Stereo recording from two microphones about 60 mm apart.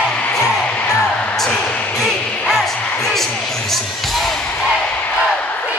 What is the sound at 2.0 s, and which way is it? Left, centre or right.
Music, centre.